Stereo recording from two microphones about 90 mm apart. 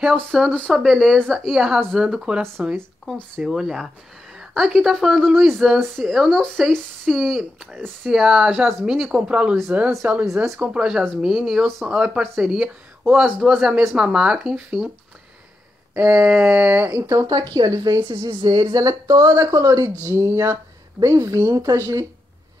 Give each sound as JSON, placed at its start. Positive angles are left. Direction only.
{"t": 0.0, "sound": "a woman's voice", "side_deg": 0}
{"t": 3.4, "sound": "a woman's voice", "side_deg": -5}
{"t": 10.2, "sound": "a woman's voice", "side_deg": -5}
{"t": 15.9, "sound": "speech", "side_deg": -20}
{"t": 17.1, "sound": "a woman's voice", "side_deg": -40}
{"t": 18.4, "sound": "a woman's voice", "side_deg": -45}